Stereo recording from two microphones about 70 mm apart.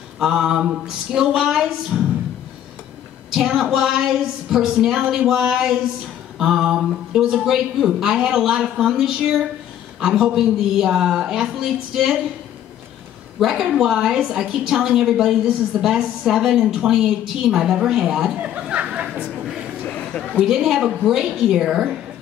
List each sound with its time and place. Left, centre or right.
0.2 s a woman's voice: centre
3.3 s a woman's voice: centre
9.9 s a woman's voice: centre
13.4 s a woman's voice: centre
18.6 s a sound: centre
19.8 s a sound: centre
20.3 s a woman's voice: centre